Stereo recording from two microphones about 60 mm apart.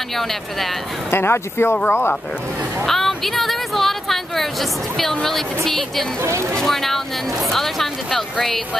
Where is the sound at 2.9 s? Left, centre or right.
Centre.